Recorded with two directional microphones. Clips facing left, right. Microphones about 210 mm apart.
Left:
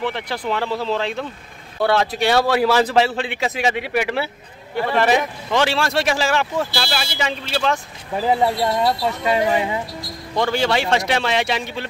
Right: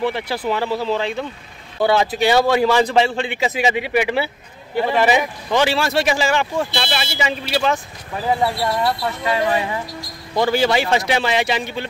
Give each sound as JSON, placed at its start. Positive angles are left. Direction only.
{"t": 0.0, "sound": "speech", "side_deg": -10}
{"t": 8.4, "sound": "speech", "side_deg": 20}
{"t": 10.3, "sound": "speech", "side_deg": -5}